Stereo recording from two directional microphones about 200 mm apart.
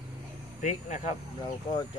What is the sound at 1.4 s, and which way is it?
Speech, 20° left (ahead or behind).